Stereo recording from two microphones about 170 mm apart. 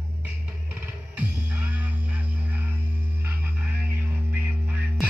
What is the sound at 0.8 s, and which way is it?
Music, 10° right (ahead or behind).